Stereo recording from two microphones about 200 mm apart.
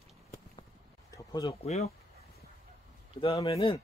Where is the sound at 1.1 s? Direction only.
20° left (ahead or behind).